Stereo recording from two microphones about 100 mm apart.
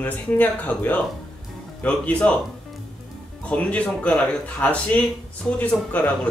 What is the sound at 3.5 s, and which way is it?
Speech, 15° left (ahead or behind).